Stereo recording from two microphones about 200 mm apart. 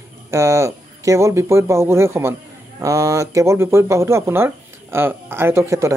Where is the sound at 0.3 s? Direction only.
15° right (ahead or behind).